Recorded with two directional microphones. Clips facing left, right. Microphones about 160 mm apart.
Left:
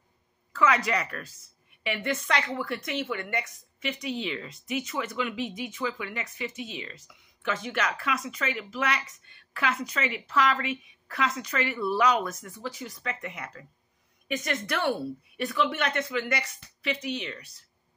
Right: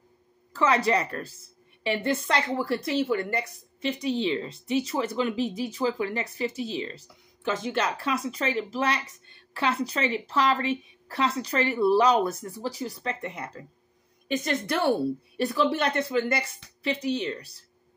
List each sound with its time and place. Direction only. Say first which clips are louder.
0.5 s a woman's voice: right 2 dB; 30° right (ahead or behind)